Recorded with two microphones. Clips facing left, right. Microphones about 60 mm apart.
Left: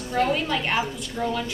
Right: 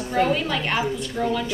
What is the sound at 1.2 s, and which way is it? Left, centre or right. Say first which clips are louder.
Speech: right 2 dB; centre.